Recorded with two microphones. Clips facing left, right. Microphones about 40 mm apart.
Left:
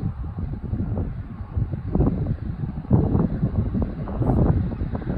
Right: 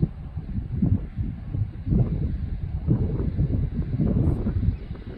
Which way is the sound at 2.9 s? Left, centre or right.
Left.